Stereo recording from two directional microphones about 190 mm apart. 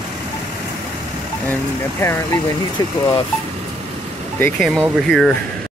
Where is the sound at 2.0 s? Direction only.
15° left (ahead or behind).